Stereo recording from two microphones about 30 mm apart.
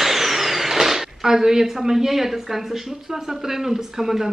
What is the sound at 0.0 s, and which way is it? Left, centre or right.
Speech, centre.